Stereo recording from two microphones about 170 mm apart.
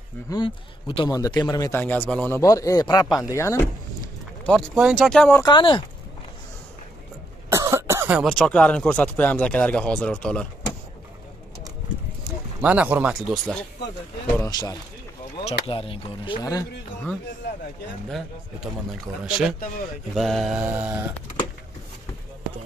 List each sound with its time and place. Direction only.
0.3 s a man's voice: 30° left (ahead or behind)
4.5 s mantra: 5° left (ahead or behind)
5.4 s a man's voice: 30° left (ahead or behind)
7.4 s cough: 20° right (ahead or behind)
8.2 s speech: 5° left (ahead or behind)
12.6 s speech: 10° right (ahead or behind)
14.4 s a man's voice: 20° left (ahead or behind)
15.4 s speech: 35° left (ahead or behind)
19.2 s mantra: 5° right (ahead or behind)